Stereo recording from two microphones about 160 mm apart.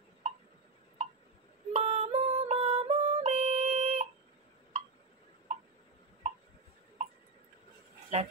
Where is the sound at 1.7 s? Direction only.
40° right (ahead or behind).